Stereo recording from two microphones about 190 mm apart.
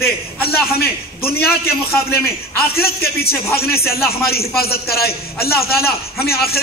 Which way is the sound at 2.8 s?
55° left (ahead or behind).